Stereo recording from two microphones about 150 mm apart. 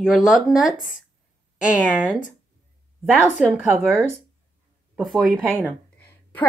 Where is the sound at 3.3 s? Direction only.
10° right (ahead or behind).